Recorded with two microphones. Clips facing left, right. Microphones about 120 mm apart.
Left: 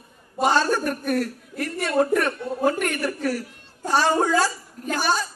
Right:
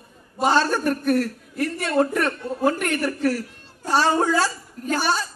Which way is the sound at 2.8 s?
10° left (ahead or behind).